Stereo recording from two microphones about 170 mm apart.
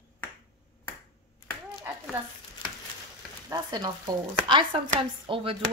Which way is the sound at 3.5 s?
25° right (ahead or behind).